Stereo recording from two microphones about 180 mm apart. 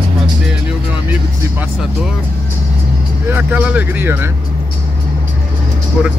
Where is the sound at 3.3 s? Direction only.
10° right (ahead or behind).